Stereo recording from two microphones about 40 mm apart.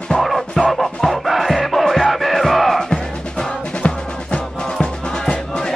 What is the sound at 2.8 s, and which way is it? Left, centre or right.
Music, centre.